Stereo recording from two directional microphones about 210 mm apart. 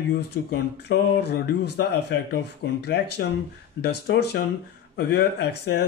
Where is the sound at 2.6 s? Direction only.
65° left (ahead or behind).